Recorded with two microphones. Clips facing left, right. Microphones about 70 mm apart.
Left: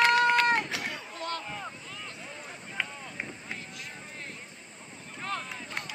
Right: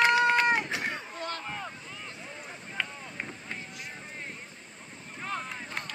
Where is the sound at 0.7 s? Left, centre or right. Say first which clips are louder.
Right 2 dB; right.